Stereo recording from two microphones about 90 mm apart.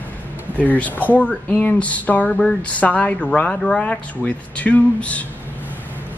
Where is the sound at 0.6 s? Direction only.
15° left (ahead or behind).